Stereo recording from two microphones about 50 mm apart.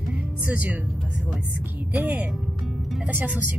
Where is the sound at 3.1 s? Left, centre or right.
Right.